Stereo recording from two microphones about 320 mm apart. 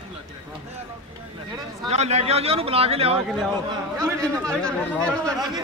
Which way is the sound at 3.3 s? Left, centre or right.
Centre.